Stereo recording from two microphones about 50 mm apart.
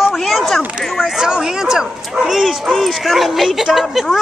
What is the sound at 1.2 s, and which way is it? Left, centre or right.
Speech, centre.